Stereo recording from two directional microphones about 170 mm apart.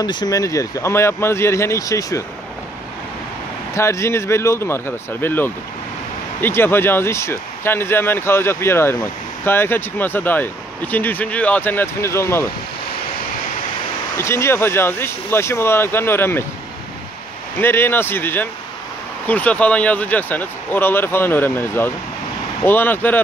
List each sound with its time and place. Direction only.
0.0 s speech: 25° left (ahead or behind)
3.7 s speech: 15° left (ahead or behind)
14.1 s speech: 15° left (ahead or behind)
17.6 s speech: 15° left (ahead or behind)